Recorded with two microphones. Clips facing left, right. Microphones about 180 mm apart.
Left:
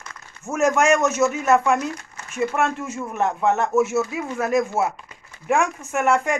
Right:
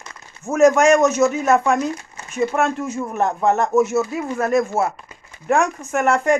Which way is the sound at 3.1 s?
35° right (ahead or behind).